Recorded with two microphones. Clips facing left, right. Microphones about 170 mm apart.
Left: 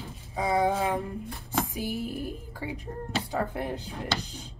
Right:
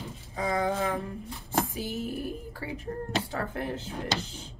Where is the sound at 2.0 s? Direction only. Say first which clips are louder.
Even; 15° left (ahead or behind).